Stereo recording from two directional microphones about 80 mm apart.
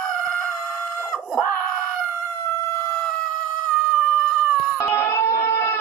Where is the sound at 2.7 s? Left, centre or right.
Left.